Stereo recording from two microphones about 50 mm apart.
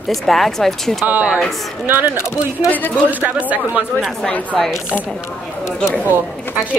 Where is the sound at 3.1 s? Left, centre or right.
Right.